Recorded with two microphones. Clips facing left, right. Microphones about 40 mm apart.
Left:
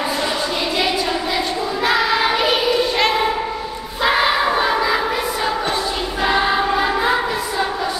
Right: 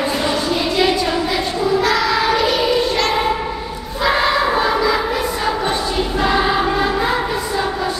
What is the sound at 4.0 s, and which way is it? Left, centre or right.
Battle cry, centre.